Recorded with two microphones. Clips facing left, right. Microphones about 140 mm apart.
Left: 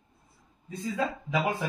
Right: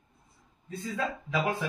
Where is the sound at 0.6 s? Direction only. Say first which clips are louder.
Left 2 dB; 15° left (ahead or behind).